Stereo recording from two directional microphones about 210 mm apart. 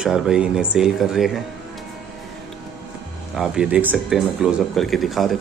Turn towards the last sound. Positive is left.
turn(degrees=0)  # may be behind; listen again after turning